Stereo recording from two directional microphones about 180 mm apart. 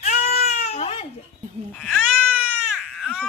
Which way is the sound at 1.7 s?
5° left (ahead or behind).